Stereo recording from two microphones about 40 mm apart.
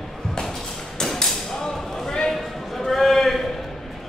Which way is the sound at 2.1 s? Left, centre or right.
Centre.